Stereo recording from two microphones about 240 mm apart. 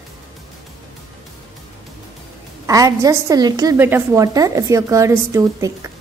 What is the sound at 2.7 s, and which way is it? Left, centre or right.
A woman's voice, centre.